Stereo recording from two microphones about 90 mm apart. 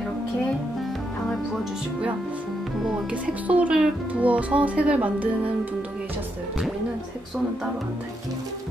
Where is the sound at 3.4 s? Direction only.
15° right (ahead or behind).